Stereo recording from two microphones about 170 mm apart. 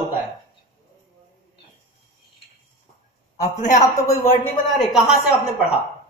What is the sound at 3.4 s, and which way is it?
A man's voice, 45° left (ahead or behind).